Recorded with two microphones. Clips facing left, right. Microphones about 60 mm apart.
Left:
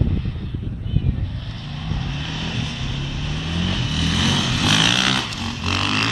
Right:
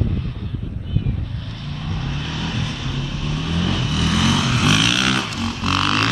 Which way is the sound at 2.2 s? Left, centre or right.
Right.